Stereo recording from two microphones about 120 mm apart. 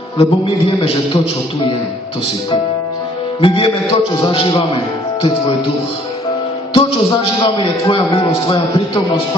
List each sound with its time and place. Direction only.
0.2 s a man's voice: 50° left (ahead or behind)
3.3 s a man's voice: 50° left (ahead or behind)
6.7 s a man's voice: 50° left (ahead or behind)